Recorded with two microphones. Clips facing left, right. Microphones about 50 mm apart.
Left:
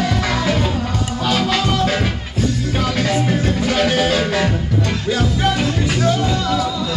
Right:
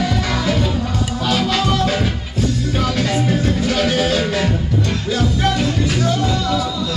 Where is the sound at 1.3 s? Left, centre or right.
Centre.